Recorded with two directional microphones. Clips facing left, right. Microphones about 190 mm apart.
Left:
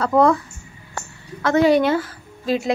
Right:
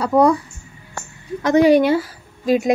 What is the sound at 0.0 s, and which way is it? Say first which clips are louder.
Speech: right 1 dB; 10° right (ahead or behind).